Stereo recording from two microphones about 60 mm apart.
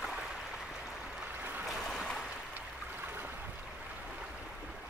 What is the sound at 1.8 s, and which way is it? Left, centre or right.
Stream, centre.